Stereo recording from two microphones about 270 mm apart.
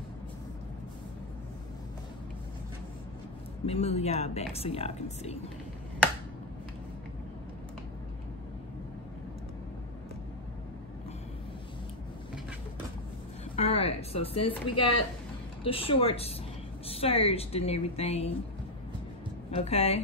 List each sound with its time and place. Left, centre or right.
3.6 s speech: left
13.6 s a sound: left
15.6 s speech: centre
19.5 s speech: left